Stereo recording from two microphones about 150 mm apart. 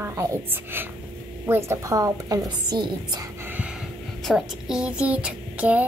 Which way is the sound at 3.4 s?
10° right (ahead or behind).